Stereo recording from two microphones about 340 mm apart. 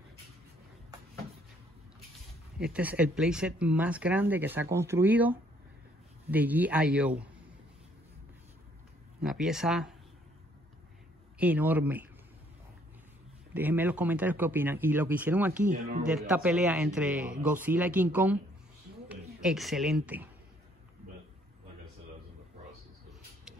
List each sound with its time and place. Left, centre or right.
2.6 s speech: centre
9.2 s speech: centre
11.3 s speech: centre
13.5 s speech: centre
15.6 s speech: right
16.1 s a woman's voice: centre